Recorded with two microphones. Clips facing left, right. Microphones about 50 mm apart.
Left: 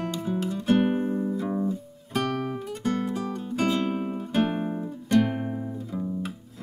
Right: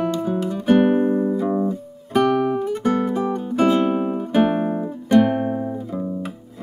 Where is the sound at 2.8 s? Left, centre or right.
Right.